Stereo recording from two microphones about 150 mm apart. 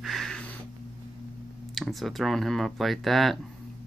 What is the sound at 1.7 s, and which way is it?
Speech, centre (ahead or behind).